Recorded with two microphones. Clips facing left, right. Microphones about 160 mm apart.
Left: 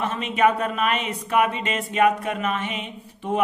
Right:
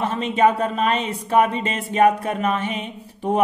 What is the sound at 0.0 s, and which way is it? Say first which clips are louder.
Speech: right 3 dB; 30° right (ahead or behind).